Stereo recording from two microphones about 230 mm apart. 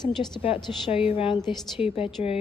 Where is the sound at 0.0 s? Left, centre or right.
Centre.